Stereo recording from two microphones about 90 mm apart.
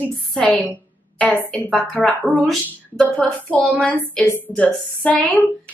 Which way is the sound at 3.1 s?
15° left (ahead or behind).